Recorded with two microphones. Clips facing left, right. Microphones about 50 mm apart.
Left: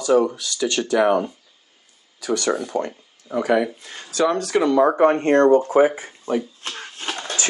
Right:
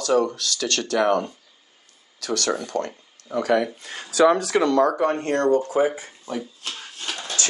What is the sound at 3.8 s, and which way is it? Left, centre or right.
Speech, centre.